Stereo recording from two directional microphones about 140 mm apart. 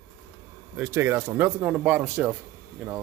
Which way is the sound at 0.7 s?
20° right (ahead or behind).